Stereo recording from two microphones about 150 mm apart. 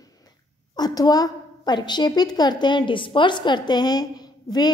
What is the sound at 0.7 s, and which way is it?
A woman's voice, 25° left (ahead or behind).